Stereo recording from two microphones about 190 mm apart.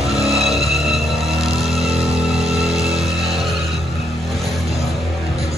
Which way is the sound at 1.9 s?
30° right (ahead or behind).